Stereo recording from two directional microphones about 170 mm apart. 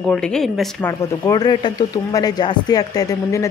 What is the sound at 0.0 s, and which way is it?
Speech, 5° left (ahead or behind).